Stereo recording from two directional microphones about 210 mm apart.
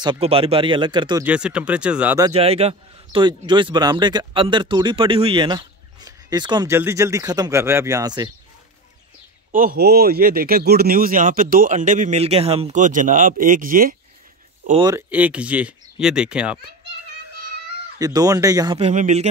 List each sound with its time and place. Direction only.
0.0 s a man's voice: 25° right (ahead or behind)
1.2 s speech: 5° right (ahead or behind)
2.3 s a man's voice: 30° right (ahead or behind)
9.5 s speech: 40° right (ahead or behind)
14.8 s speech: 20° right (ahead or behind)
15.0 s speech: 5° right (ahead or behind)
17.9 s speech: 15° right (ahead or behind)
18.8 s speech: 35° right (ahead or behind)